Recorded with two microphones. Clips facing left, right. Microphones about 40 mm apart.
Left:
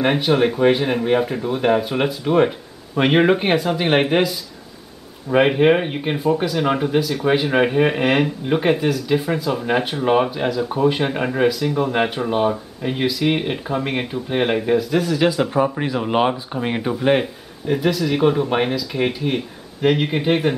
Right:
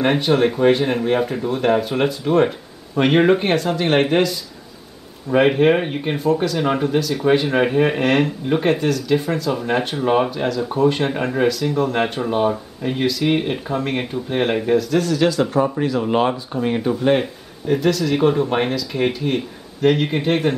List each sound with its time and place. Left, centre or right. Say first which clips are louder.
0.0 s speech: even; centre